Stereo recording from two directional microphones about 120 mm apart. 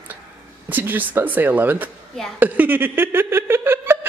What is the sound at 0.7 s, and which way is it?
Laughter, 15° right (ahead or behind).